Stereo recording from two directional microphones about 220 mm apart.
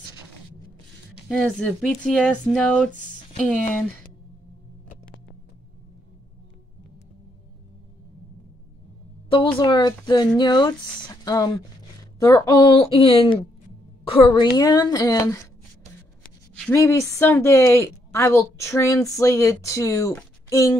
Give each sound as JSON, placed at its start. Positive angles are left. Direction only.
{"t": 1.3, "sound": "speech", "side_deg": 5}
{"t": 9.3, "sound": "speech", "side_deg": 20}
{"t": 20.2, "sound": "a sound", "side_deg": 15}